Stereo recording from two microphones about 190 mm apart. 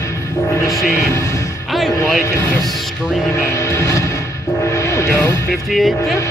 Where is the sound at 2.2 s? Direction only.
15° left (ahead or behind).